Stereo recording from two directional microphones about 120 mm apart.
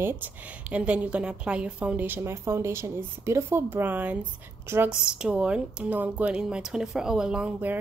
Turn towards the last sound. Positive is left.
turn(degrees=-10)  # may be behind; listen again after turning